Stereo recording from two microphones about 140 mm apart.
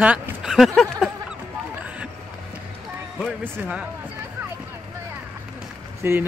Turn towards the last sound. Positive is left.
turn(degrees=-15)  # may be behind; listen again after turning